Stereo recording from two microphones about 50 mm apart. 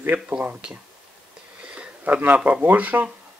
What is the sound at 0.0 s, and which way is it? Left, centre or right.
Speech, right.